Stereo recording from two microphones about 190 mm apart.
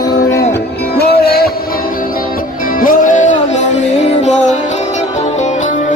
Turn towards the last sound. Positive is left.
turn(degrees=40)  # may be behind; listen again after turning